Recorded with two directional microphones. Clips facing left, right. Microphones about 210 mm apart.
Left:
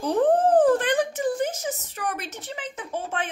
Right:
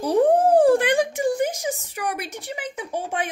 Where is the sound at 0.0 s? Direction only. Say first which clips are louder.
Right 3 dB; 10° right (ahead or behind).